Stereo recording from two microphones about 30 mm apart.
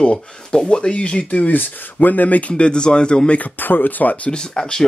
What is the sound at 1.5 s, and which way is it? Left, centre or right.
Speech, left.